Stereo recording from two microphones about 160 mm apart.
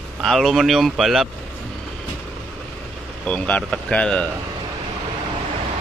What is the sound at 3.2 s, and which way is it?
Speech, 10° left (ahead or behind).